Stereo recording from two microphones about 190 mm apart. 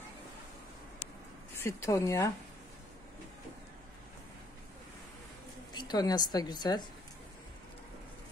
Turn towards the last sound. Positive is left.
turn(degrees=20)  # may be behind; listen again after turning